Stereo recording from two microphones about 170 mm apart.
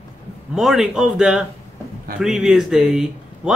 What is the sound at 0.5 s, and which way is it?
Speech, centre (ahead or behind).